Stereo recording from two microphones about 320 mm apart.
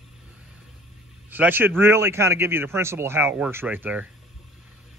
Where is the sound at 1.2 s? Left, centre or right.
Centre.